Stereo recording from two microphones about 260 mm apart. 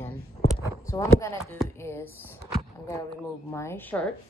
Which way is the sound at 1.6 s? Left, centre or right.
Centre.